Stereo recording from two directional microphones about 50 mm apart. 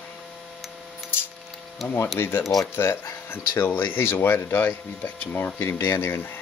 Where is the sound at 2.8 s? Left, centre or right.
Left.